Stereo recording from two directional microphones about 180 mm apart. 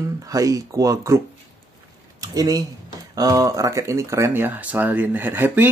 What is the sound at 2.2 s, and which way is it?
Speech, 20° right (ahead or behind).